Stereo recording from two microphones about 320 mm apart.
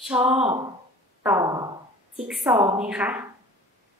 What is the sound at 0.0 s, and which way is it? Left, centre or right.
Speech, centre.